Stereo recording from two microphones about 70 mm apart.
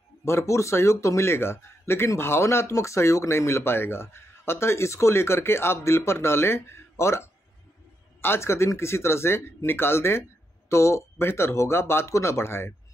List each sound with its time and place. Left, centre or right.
0.2 s speech: left